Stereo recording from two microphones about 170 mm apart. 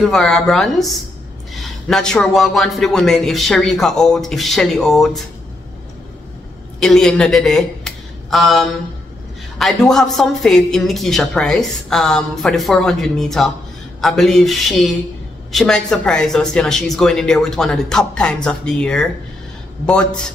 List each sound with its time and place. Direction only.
0.0 s a woman's voice: centre (ahead or behind)
6.8 s a woman's voice: 5° left (ahead or behind)